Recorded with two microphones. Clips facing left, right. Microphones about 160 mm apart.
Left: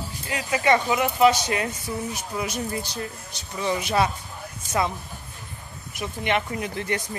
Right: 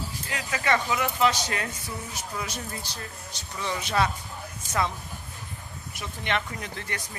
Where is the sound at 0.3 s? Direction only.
15° left (ahead or behind).